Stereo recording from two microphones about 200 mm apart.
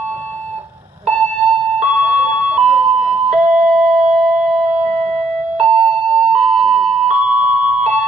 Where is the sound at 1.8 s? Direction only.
35° right (ahead or behind).